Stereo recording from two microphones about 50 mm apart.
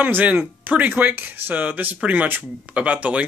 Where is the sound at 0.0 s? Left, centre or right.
Right.